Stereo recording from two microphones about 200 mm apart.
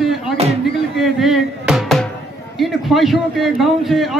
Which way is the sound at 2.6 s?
Centre (ahead or behind).